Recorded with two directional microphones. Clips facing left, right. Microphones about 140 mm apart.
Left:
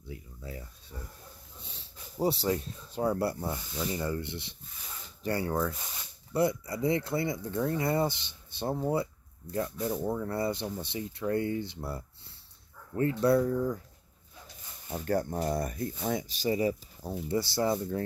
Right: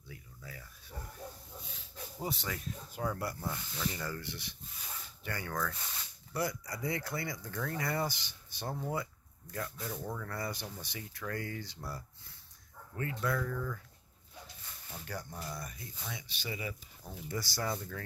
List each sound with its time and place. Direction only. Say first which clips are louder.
0.1 s a sound: left 8 dB; 25° left (ahead or behind)
1.8 s speech: left 11 dB; 30° left (ahead or behind)
14.9 s speech: left 14 dB; 50° left (ahead or behind); by 18.0 s 25° left (ahead or behind)